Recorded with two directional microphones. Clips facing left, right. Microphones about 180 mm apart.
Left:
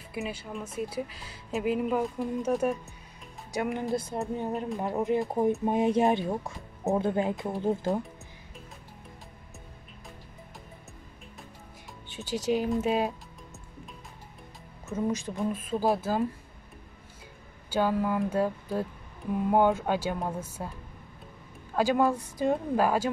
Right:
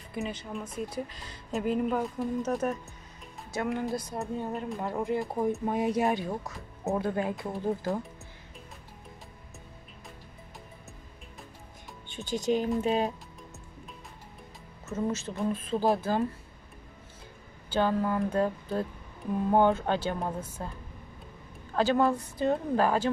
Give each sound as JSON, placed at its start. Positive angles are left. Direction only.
{"t": 0.1, "sound": "speech", "side_deg": 5}
{"t": 3.9, "sound": "speech", "side_deg": 25}
{"t": 12.1, "sound": "music", "side_deg": 5}
{"t": 15.0, "sound": "speech", "side_deg": 10}
{"t": 17.6, "sound": "speech", "side_deg": 10}
{"t": 21.7, "sound": "speech", "side_deg": 10}